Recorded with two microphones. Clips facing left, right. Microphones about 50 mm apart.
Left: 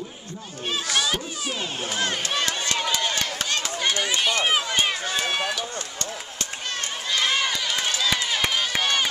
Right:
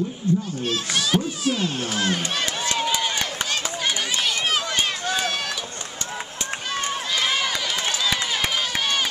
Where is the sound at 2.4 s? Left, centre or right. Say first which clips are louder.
Right 1 dB; centre.